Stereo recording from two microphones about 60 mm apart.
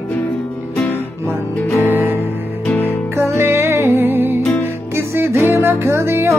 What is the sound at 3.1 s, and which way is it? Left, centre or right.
Music, right.